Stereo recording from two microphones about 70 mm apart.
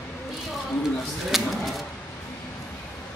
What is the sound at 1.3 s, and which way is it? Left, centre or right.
Speech, centre.